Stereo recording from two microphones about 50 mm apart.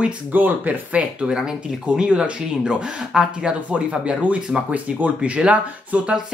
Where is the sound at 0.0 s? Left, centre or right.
Right.